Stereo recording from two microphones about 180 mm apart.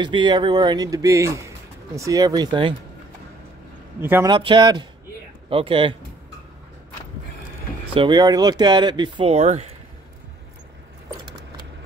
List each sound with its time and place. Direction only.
0.0 s speech: 25° right (ahead or behind)
4.0 s speech: 10° right (ahead or behind)
4.3 s speech: 25° right (ahead or behind)
7.9 s speech: 25° right (ahead or behind)